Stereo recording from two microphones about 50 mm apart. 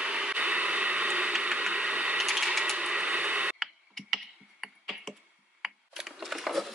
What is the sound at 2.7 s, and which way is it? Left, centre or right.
Tick, centre.